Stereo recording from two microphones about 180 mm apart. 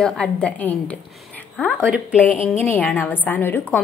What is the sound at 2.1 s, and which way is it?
A woman's voice, 10° left (ahead or behind).